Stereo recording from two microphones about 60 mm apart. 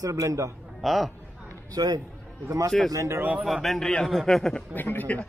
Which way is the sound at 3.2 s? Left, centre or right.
Right.